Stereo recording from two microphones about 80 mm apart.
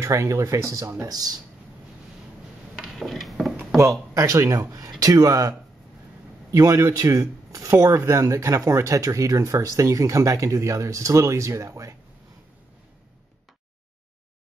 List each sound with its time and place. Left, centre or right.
0.0 s speech: right
1.0 s speech: right
2.8 s a sound: centre
4.1 s speech: right